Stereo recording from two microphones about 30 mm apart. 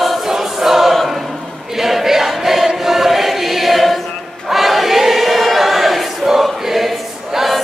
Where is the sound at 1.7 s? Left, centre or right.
Centre.